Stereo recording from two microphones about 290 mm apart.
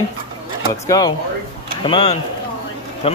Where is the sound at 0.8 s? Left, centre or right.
Centre.